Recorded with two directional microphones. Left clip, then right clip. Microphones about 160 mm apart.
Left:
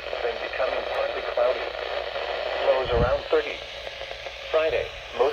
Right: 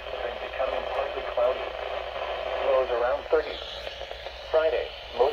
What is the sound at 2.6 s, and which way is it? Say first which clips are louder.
Radio: left 1 dB; 55° left (ahead or behind).